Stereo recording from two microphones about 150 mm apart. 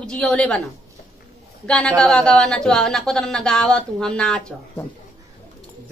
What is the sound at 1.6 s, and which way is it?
A woman's voice, 5° left (ahead or behind).